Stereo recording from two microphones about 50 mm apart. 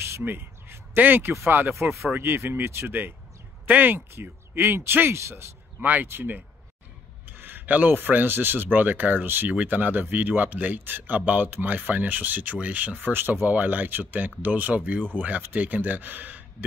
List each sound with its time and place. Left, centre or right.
0.2 s a sound: right
0.9 s a man's voice: right
2.1 s speech: right
2.9 s a man's voice: right
4.2 s speech: right
5.8 s a man's voice: right